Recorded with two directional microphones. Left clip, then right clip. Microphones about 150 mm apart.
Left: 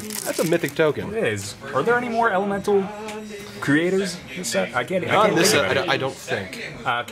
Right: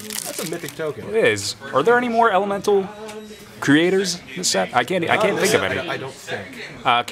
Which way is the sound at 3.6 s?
30° right (ahead or behind).